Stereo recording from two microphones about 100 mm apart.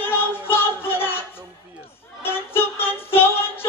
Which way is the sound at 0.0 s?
20° left (ahead or behind).